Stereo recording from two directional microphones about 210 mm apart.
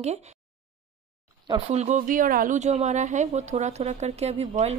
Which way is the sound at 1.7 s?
30° right (ahead or behind).